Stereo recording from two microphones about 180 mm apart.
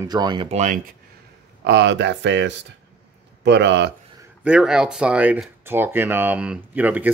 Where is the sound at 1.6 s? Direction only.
75° right (ahead or behind).